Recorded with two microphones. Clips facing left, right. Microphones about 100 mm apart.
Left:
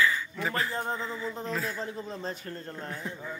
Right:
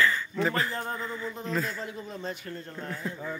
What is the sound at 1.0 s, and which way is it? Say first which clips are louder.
Speech: even; centre (ahead or behind).